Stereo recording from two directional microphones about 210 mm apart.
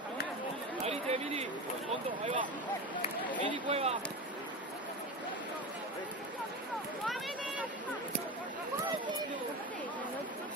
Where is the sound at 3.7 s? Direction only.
30° right (ahead or behind).